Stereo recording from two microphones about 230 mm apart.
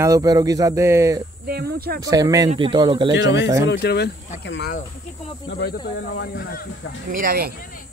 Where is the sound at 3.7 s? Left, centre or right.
Left.